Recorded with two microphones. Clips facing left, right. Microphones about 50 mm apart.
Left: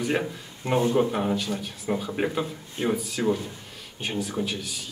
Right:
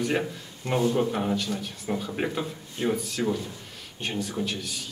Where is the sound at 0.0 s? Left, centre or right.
Centre.